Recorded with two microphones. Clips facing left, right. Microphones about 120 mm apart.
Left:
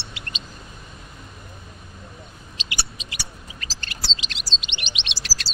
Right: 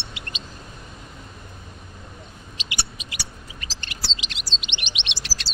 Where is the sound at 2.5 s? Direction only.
20° right (ahead or behind).